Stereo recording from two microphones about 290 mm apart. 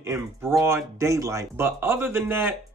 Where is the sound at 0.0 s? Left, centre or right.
Centre.